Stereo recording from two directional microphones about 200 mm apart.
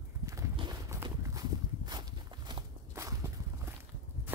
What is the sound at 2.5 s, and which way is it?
Walk, 20° right (ahead or behind).